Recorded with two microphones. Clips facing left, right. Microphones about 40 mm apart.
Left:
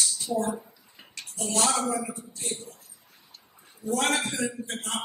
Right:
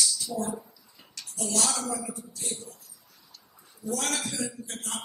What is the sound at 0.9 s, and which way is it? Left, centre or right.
A man's voice, left.